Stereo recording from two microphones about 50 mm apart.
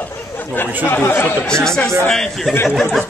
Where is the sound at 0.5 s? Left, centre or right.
Left.